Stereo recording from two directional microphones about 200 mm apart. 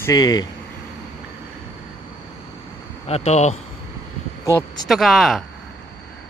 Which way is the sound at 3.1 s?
35° left (ahead or behind).